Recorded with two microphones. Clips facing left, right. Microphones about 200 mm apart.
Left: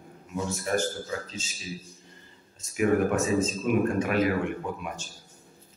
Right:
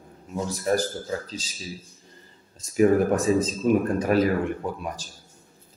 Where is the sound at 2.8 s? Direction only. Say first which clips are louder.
Right 4 dB; 35° right (ahead or behind).